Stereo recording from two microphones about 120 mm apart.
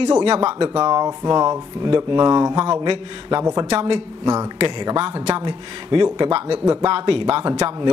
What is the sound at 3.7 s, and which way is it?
Speech, 60° right (ahead or behind).